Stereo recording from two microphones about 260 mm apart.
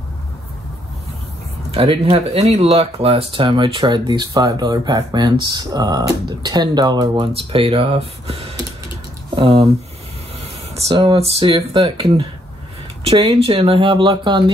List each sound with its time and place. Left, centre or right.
1.7 s speech: right
10.8 s speech: centre